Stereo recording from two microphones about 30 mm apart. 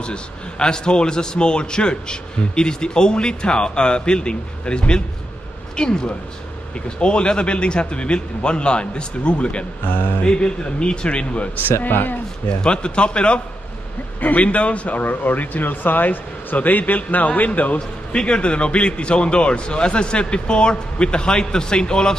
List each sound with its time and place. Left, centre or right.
0.0 s a man's voice: left
9.8 s speech: left
10.2 s a man's voice: left
11.6 s speech: left
12.6 s a man's voice: left
14.2 s a man's voice: left
15.0 s speech: left
16.5 s a man's voice: left
17.7 s a man's voice: left